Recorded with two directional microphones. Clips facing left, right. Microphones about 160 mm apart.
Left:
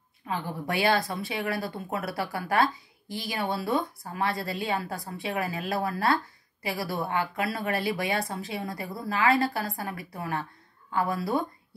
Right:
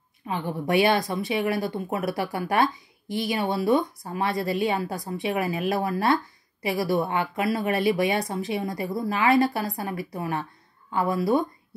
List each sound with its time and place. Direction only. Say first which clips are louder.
0.3 s a woman's voice: right 6 dB; 20° right (ahead or behind)